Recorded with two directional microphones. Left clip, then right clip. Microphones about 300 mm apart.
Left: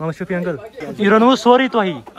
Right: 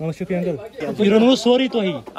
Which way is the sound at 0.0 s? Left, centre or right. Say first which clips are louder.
Left 2 dB; centre.